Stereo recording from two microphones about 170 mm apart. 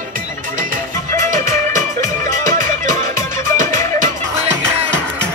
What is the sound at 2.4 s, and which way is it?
Music, 50° right (ahead or behind).